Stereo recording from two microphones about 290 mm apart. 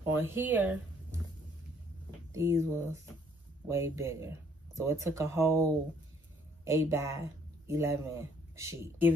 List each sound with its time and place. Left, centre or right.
0.0 s speech: centre
2.3 s speech: centre